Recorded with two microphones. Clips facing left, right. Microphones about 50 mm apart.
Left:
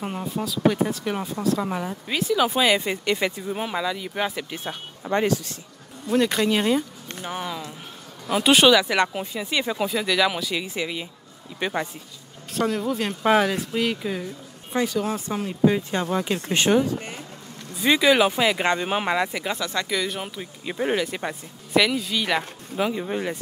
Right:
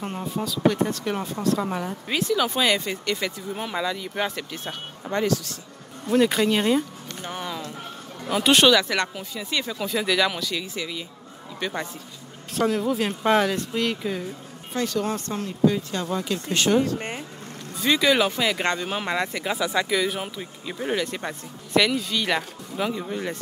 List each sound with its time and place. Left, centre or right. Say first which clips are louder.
0.0 s speech: left 1 dB; centre
2.8 s speech: left 3 dB; left
3.5 s speech: left 1 dB; centre
5.1 s speech: left 2 dB; left
6.0 s speech: right 1 dB; centre
9.1 s speech: left 3 dB; left
9.9 s speech: right 1 dB; centre
12.5 s speech: right 1 dB; centre
15.6 s speech: left 1 dB; left
17.7 s speech: left 2 dB; centre
19.1 s speech: left 2 dB; centre
19.5 s speech: right 3 dB; centre
20.6 s speech: left 3 dB; centre
21.0 s speech: left 1 dB; centre